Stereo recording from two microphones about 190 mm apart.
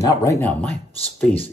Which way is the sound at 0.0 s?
15° left (ahead or behind).